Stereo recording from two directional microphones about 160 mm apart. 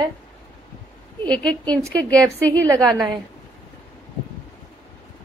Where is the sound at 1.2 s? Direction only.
5° left (ahead or behind).